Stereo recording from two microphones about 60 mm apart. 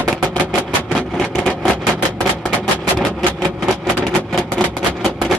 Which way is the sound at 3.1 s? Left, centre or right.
Centre.